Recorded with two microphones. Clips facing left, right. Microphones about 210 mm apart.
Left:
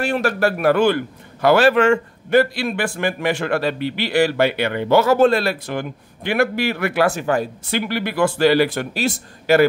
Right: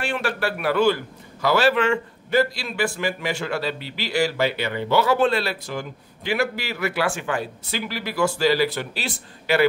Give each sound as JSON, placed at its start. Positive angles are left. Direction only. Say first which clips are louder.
{"t": 0.0, "sound": "a man's voice", "louder": "left 6 dB", "side_deg": 40}
{"t": 7.1, "sound": "speech", "louder": "left 6 dB", "side_deg": 40}
{"t": 7.7, "sound": "a man's voice", "louder": "left 6 dB", "side_deg": 60}